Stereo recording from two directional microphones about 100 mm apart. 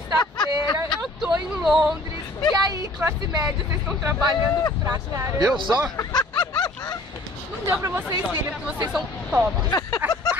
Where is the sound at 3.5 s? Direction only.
25° right (ahead or behind).